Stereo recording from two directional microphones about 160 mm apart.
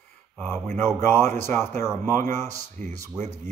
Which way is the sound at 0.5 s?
15° left (ahead or behind).